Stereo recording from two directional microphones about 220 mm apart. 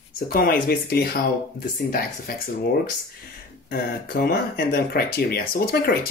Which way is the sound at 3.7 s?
45° left (ahead or behind).